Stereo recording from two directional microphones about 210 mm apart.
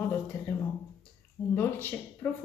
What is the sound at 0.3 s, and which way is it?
A man's voice, 10° left (ahead or behind).